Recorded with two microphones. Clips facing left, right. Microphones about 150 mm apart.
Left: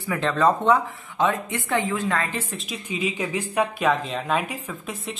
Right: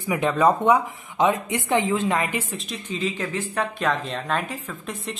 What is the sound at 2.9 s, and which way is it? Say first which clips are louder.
A woman's voice: left 1 dB; 10° left (ahead or behind).